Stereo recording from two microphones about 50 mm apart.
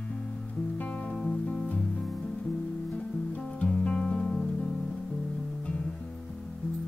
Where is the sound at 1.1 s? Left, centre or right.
Centre.